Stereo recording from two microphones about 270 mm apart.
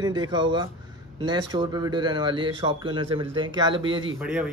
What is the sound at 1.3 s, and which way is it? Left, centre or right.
Speech, centre.